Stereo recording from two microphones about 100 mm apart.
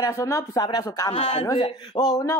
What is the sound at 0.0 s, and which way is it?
Speech, 30° left (ahead or behind).